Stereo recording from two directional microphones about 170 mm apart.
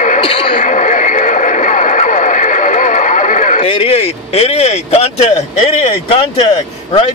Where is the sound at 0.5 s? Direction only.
50° left (ahead or behind).